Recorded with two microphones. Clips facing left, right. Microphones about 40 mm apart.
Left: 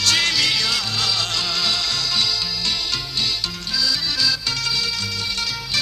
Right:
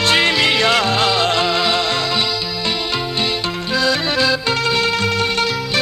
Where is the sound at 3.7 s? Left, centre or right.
Right.